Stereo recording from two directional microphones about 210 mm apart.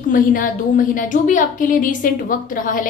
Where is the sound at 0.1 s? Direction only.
40° left (ahead or behind).